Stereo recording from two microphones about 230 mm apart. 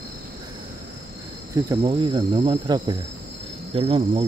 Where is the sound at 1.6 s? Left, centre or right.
Centre.